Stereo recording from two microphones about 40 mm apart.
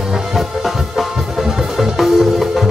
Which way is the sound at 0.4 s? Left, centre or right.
Centre.